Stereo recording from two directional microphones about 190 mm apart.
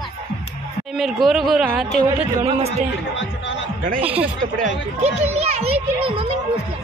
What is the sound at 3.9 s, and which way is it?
Speech, 10° right (ahead or behind).